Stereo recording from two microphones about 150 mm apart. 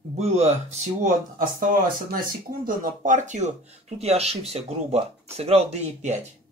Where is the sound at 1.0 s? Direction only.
65° right (ahead or behind).